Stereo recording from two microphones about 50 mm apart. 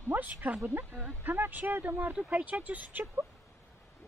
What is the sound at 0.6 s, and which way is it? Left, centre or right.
Speech, right.